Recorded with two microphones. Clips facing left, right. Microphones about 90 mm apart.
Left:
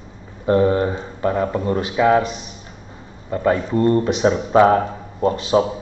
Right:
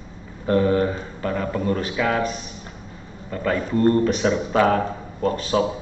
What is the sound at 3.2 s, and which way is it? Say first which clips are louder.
A man's voice: left 5 dB; 30° left (ahead or behind).